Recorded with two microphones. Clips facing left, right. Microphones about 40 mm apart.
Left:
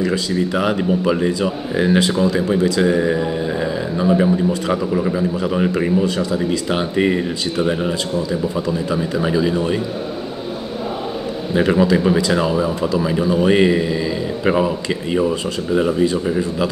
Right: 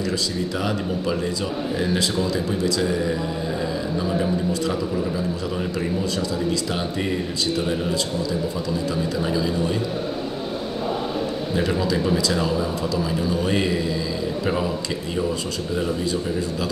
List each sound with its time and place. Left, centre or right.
0.0 s speech: left
11.5 s speech: left